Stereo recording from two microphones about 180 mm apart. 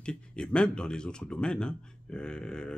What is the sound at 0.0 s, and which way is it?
Speech, 5° left (ahead or behind).